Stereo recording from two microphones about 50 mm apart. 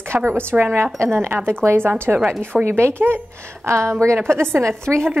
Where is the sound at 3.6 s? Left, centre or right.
Right.